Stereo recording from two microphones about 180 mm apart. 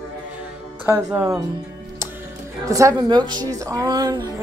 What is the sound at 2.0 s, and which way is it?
Music, 15° right (ahead or behind).